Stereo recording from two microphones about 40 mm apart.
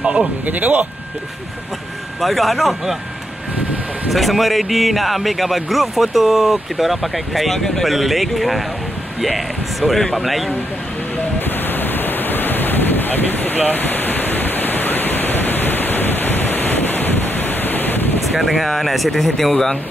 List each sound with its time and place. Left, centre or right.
0.0 s speech: right
0.5 s speech: right
2.2 s speech: centre
4.1 s speech: centre
7.9 s speech: centre
11.3 s thunder: left
13.7 s pink noise: left
18.2 s speech: centre